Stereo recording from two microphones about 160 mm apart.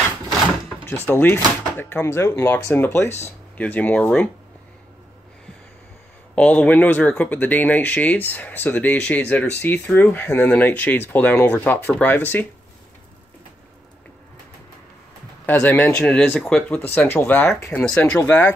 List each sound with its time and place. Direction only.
0.8 s speech: 15° left (ahead or behind)
6.3 s speech: 5° left (ahead or behind)
15.4 s speech: 10° left (ahead or behind)